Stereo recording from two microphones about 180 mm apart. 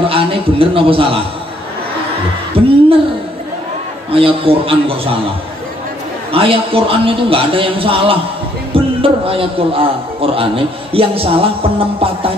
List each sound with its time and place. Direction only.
0.0 s a sound: 30° right (ahead or behind)
2.6 s speech: 30° right (ahead or behind)
4.1 s a man's voice: 30° right (ahead or behind)
6.3 s a man's voice: 30° right (ahead or behind)